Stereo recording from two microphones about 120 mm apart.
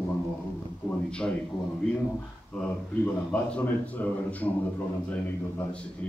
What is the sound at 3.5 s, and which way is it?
Speech, 15° left (ahead or behind).